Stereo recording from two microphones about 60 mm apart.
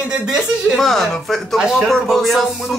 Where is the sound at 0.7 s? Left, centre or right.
Centre.